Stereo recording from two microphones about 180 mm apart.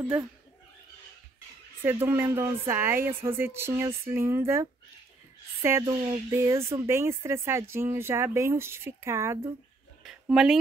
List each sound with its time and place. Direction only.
1.9 s speech: 15° right (ahead or behind)
6.3 s speech: 15° right (ahead or behind)
10.0 s speech: 5° right (ahead or behind)